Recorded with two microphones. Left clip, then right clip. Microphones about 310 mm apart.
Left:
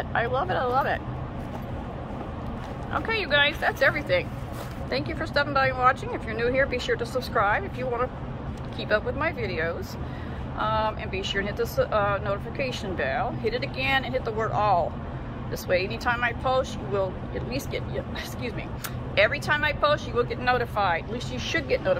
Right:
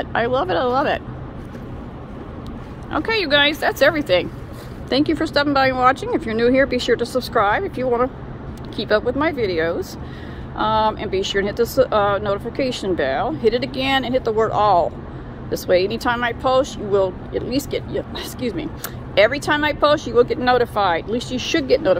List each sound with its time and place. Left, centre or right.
0.1 s speech: right
2.9 s speech: right